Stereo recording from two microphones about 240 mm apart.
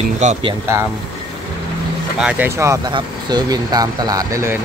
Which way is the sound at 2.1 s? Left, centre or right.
Centre.